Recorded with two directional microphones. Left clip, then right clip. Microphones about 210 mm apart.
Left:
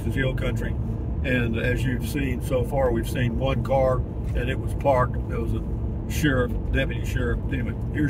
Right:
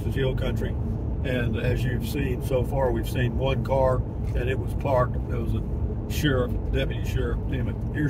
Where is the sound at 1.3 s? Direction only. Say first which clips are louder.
Left 3 dB; 15° left (ahead or behind).